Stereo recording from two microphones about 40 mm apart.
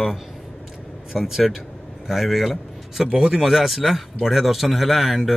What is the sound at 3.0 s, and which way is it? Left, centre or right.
Speech, centre.